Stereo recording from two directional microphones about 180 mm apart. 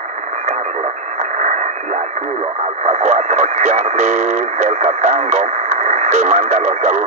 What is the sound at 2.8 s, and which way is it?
Speech, 40° right (ahead or behind).